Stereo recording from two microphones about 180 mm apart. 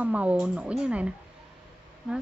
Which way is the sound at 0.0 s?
10° right (ahead or behind).